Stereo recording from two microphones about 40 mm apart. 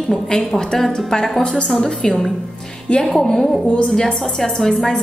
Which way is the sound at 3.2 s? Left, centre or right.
Centre.